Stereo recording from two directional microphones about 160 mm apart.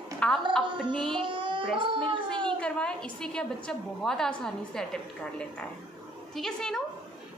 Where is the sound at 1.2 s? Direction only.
30° right (ahead or behind).